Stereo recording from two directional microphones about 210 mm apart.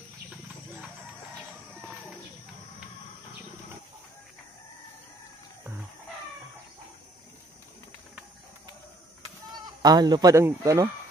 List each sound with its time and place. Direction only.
9.8 s speech: 20° right (ahead or behind)